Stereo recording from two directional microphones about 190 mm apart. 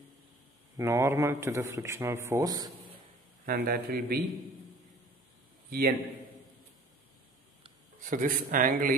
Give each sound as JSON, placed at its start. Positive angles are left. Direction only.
{"t": 0.7, "sound": "speech", "side_deg": -15}
{"t": 3.4, "sound": "speech", "side_deg": -55}
{"t": 5.7, "sound": "a man's voice", "side_deg": -55}
{"t": 8.0, "sound": "speech", "side_deg": -45}